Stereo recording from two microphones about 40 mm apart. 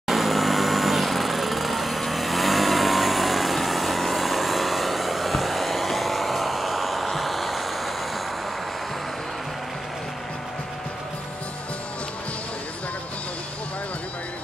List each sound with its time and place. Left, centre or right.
0.1 s vehicle: centre